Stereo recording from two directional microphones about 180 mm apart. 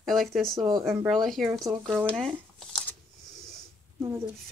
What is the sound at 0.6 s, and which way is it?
Speech, 25° right (ahead or behind).